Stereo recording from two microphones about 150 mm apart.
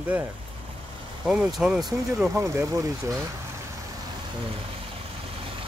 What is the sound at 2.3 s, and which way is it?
Speech, 15° right (ahead or behind).